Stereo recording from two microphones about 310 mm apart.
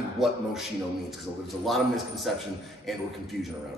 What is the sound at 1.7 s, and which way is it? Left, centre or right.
Speech, centre.